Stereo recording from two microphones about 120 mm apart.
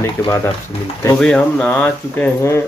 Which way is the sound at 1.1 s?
5° left (ahead or behind).